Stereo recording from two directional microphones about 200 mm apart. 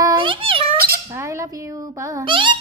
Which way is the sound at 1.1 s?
15° right (ahead or behind).